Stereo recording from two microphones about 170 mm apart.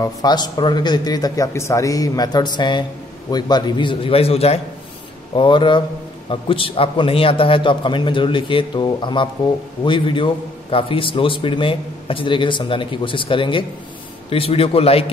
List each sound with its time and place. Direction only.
0.0 s a man's voice: 25° left (ahead or behind)